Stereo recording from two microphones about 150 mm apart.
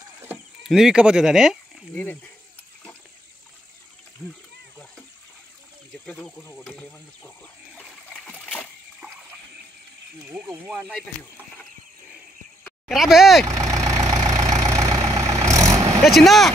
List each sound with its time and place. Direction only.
0.7 s speech: 5° right (ahead or behind)
2.0 s speech: 10° left (ahead or behind)
6.0 s speech: 5° left (ahead or behind)
8.3 s splash: 10° left (ahead or behind)
10.3 s speech: 10° right (ahead or behind)
12.8 s speech: centre (ahead or behind)
13.7 s vehicle: 25° right (ahead or behind)
16.0 s speech: centre (ahead or behind)